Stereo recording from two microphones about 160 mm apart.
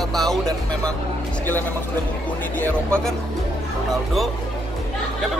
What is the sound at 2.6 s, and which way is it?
Speech, 10° left (ahead or behind).